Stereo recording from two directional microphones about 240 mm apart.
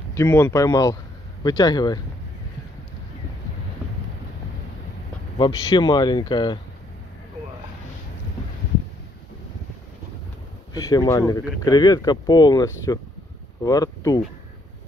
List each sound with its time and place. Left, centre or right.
0.1 s speech: centre
5.4 s speech: centre
10.7 s speech: centre